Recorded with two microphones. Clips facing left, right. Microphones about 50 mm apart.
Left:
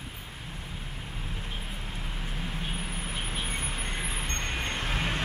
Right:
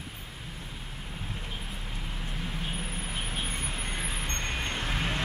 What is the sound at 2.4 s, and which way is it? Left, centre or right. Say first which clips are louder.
Vehicle: even; centre.